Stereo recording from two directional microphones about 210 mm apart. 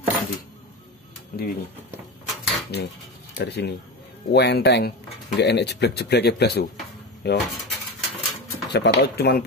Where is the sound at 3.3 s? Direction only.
55° left (ahead or behind).